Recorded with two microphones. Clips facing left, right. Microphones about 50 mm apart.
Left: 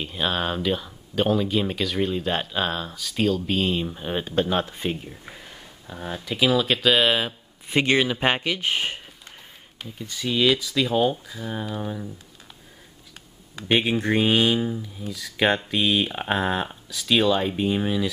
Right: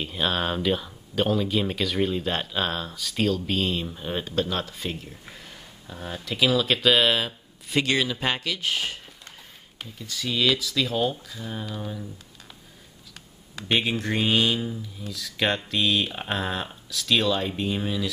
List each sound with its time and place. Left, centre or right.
0.0 s speech: centre
7.7 s speech: left
13.6 s speech: centre